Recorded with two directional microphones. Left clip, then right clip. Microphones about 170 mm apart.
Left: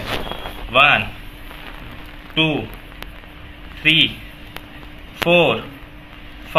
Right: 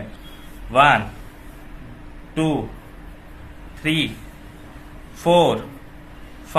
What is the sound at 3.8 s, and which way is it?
Speech, 15° right (ahead or behind).